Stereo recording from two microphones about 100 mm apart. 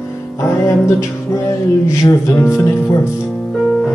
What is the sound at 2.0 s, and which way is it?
Speech, 30° left (ahead or behind).